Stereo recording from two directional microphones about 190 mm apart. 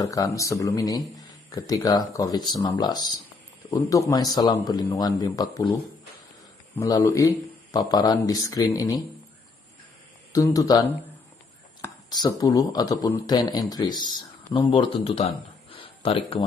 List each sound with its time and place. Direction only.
0.0 s speech: 15° left (ahead or behind)
6.8 s a man's voice: 15° left (ahead or behind)
10.3 s speech: 20° left (ahead or behind)
15.7 s a sound: 30° left (ahead or behind)